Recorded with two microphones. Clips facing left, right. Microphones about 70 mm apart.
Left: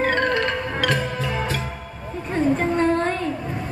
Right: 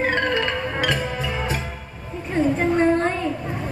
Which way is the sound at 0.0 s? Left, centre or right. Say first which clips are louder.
Left 1 dB; right.